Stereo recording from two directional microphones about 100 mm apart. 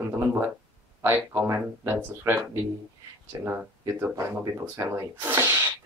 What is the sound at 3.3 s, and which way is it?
Speech, 35° right (ahead or behind).